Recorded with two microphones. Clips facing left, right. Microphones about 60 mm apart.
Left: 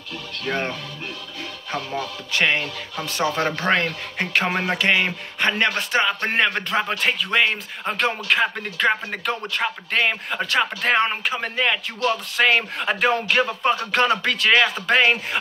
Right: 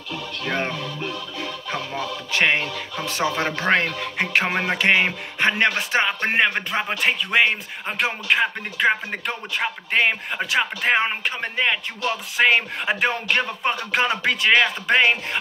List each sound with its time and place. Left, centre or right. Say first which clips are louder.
0.5 s speech: even; centre
6.3 s speech: even; centre
13.7 s speech: left 2 dB; centre